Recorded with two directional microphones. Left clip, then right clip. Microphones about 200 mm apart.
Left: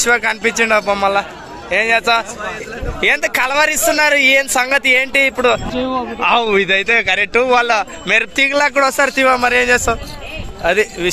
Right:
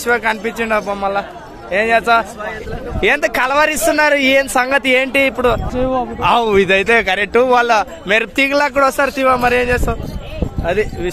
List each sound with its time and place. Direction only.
0.0 s a man's voice: centre (ahead or behind)